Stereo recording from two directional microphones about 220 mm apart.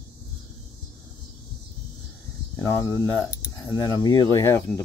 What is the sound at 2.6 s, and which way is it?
Speech, 15° left (ahead or behind).